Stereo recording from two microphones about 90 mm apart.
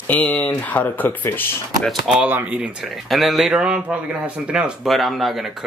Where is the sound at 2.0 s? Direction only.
15° right (ahead or behind).